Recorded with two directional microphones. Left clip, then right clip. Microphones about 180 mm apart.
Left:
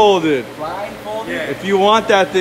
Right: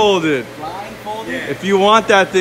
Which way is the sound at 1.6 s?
5° left (ahead or behind).